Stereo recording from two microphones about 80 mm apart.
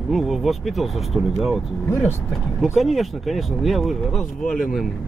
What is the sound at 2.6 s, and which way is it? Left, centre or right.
Speech, centre.